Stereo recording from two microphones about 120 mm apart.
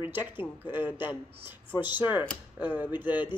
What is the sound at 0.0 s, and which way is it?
Speech, 15° right (ahead or behind).